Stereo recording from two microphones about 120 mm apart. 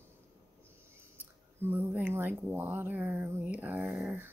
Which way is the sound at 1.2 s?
20° right (ahead or behind).